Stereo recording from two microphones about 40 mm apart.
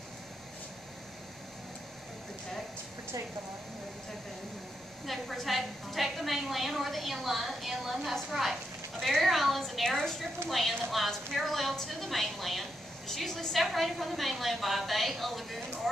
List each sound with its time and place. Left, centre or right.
5.0 s a woman's voice: centre
9.8 s a woman's voice: centre
10.5 s a woman's voice: centre